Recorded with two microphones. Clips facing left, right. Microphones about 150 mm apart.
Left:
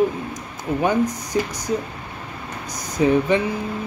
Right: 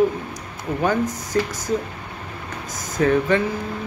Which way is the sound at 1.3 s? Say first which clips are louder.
Right 1 dB; 10° left (ahead or behind).